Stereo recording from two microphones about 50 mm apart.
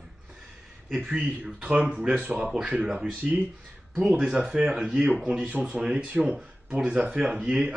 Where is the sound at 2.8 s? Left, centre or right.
Centre.